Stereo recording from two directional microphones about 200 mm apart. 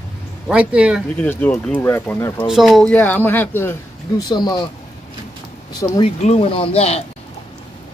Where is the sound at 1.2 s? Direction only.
10° left (ahead or behind).